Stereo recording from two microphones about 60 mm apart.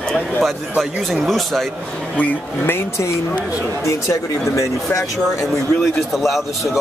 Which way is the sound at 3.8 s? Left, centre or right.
Left.